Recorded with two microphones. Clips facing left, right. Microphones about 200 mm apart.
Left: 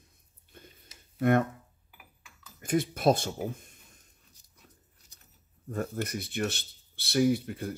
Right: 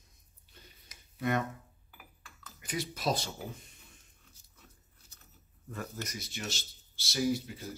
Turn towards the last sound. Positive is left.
turn(degrees=55)  # may be behind; listen again after turning